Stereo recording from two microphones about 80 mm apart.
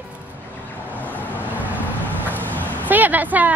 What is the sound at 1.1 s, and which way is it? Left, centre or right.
Vehicle, right.